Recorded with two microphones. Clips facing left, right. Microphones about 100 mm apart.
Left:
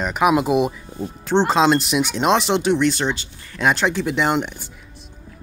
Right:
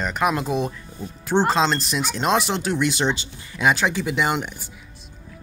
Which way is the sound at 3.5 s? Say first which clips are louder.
Left 1 dB; 5° right (ahead or behind).